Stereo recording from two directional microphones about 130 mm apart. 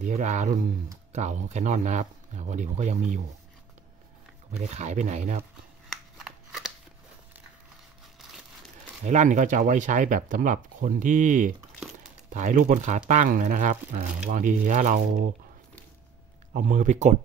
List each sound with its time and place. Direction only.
0.0 s speech: 75° right (ahead or behind)
4.5 s speech: 65° right (ahead or behind)
6.1 s scissors: centre (ahead or behind)
9.0 s speech: 70° right (ahead or behind)
11.9 s crumpling: 70° right (ahead or behind)
13.1 s speech: 75° right (ahead or behind)
16.5 s speech: 80° right